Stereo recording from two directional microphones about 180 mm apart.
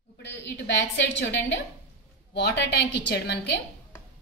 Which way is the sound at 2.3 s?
75° left (ahead or behind).